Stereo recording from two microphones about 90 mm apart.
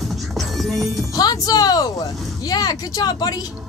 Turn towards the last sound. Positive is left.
turn(degrees=45)  # may be behind; listen again after turning